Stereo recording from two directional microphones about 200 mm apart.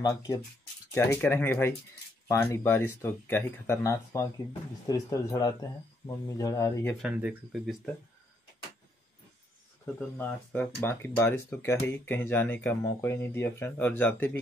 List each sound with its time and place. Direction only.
0.9 s speech: 10° left (ahead or behind)
7.0 s speech: 5° right (ahead or behind)
9.9 s speech: 10° left (ahead or behind)